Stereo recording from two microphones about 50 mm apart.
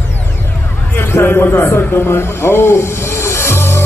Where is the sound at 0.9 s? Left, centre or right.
Left.